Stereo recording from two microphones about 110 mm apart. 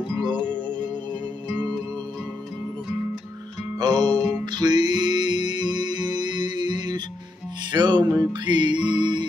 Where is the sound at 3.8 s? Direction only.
40° right (ahead or behind).